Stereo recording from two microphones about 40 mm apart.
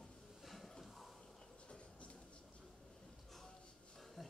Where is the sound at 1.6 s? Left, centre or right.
Left.